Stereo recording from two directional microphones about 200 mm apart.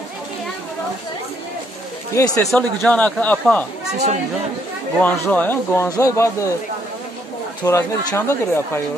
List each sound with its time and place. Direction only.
2.1 s speech: 15° left (ahead or behind)
2.4 s speech: 5° left (ahead or behind)
4.9 s speech: 10° left (ahead or behind)
7.6 s speech: 15° left (ahead or behind)